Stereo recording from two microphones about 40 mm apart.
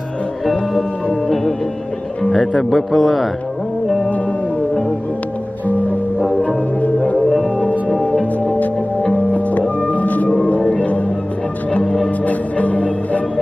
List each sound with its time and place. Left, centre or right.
2.3 s speech: centre
2.7 s a man's voice: centre
5.7 s music: left
8.0 s music: left
11.8 s music: centre
12.3 s music: left